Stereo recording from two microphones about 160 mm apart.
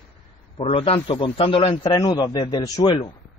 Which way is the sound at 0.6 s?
35° left (ahead or behind).